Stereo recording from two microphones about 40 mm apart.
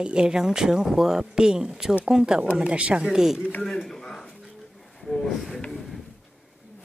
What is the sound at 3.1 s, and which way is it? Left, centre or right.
Speech, centre.